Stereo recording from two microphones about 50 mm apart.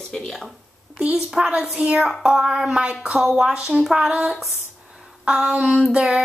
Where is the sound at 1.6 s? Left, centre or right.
Centre.